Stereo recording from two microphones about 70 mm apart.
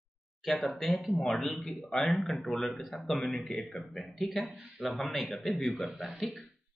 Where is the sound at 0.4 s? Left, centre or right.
Centre.